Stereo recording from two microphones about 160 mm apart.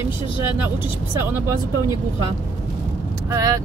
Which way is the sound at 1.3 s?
15° right (ahead or behind).